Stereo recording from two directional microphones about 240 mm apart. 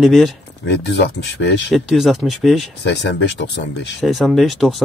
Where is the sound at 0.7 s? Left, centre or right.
Left.